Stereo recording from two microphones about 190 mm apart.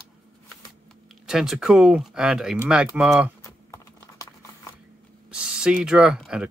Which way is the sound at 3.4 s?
15° left (ahead or behind).